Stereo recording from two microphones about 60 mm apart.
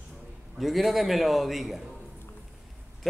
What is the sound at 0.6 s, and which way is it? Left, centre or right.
A man's voice, centre.